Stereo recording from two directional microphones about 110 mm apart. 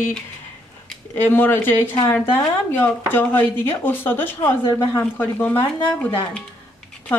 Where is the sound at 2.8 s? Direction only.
15° left (ahead or behind).